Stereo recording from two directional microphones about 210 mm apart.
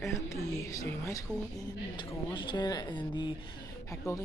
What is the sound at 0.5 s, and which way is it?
Speech, 15° left (ahead or behind).